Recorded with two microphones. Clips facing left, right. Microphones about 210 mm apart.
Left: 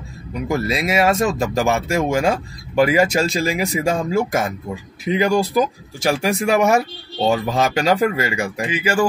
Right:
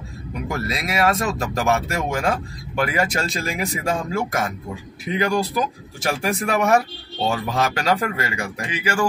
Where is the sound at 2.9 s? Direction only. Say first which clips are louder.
Left 6 dB; 25° left (ahead or behind).